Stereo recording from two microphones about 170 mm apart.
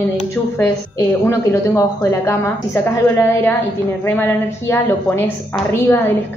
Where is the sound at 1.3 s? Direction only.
15° left (ahead or behind).